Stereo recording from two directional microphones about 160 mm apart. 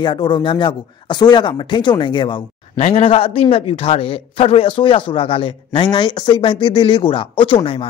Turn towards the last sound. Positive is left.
turn(degrees=35)  # may be behind; listen again after turning